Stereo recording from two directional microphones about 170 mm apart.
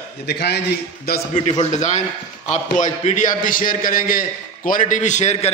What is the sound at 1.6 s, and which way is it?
A man's voice, 45° left (ahead or behind).